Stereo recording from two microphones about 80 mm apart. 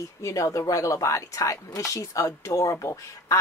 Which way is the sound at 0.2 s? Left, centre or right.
Left.